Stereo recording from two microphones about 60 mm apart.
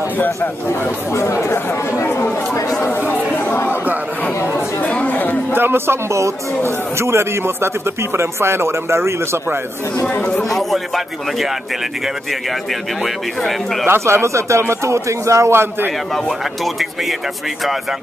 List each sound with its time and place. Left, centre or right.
0.2 s speech: left
1.1 s speech: left
4.8 s chatter: left
5.5 s a man's voice: right
13.5 s speech: centre
13.8 s a man's voice: right